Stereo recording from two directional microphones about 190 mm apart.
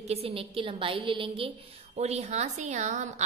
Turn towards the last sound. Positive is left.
turn(degrees=-40)  # may be behind; listen again after turning